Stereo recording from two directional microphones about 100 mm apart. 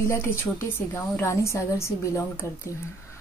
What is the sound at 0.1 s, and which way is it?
A woman's voice, 25° left (ahead or behind).